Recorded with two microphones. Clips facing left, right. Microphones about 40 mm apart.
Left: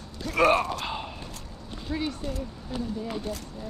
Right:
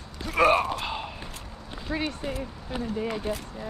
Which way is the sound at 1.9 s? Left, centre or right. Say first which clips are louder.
Right 1 dB; right.